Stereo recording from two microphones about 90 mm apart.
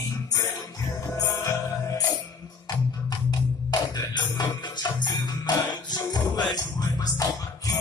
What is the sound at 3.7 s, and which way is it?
Music, 50° left (ahead or behind).